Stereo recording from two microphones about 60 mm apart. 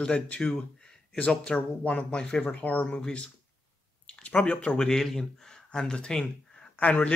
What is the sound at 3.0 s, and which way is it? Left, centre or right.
Speech, centre.